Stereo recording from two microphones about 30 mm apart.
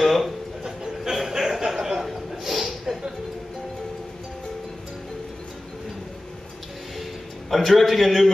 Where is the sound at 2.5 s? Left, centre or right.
Centre.